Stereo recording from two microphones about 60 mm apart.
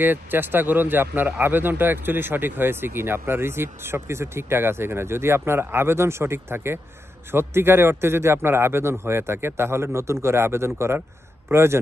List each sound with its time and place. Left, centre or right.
0.0 s a man's voice: right